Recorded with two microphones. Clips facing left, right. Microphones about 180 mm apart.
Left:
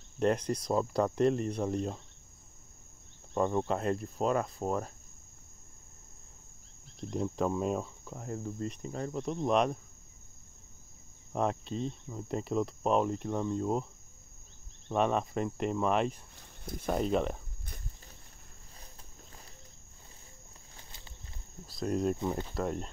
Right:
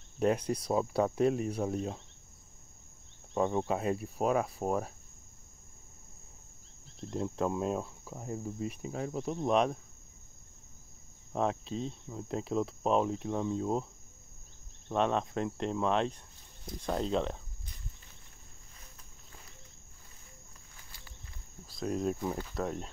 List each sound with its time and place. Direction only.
0.2 s cricket: 5° right (ahead or behind)
3.3 s cricket: 5° right (ahead or behind)
7.0 s cricket: centre (ahead or behind)
11.3 s cricket: centre (ahead or behind)
14.9 s cricket: 5° left (ahead or behind)
16.8 s speech: 10° left (ahead or behind)
20.7 s a sound: 25° left (ahead or behind)
21.7 s cricket: centre (ahead or behind)